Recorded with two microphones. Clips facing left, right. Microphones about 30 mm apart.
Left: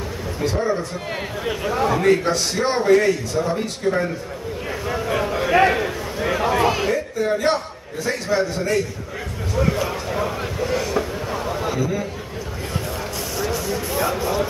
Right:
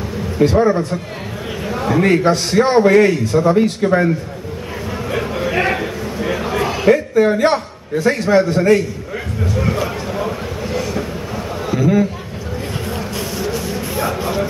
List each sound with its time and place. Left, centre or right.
0.5 s a man's voice: right
1.7 s a man's voice: centre
2.0 s a man's voice: right
5.0 s a sound: centre
6.9 s a man's voice: right
9.6 s a sound: centre
10.1 s vehicle: centre
13.4 s spray: centre
13.9 s a sound: centre